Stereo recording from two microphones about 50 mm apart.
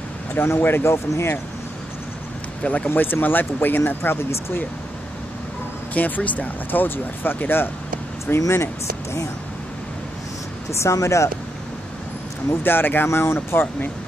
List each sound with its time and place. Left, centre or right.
0.5 s speech: left
0.9 s speech: left
2.6 s speech: left
2.9 s speech: left
5.9 s speech: left
8.3 s speech: left
10.7 s speech: left
12.6 s speech: left